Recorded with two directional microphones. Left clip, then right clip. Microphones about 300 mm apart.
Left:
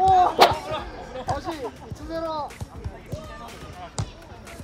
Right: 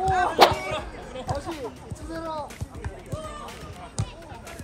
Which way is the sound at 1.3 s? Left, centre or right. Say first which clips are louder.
Left 3 dB; left.